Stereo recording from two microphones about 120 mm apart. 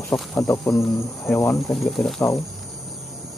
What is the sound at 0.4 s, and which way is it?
Speech, 20° left (ahead or behind).